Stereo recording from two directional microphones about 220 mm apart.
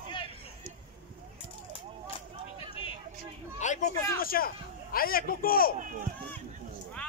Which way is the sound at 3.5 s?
35° left (ahead or behind).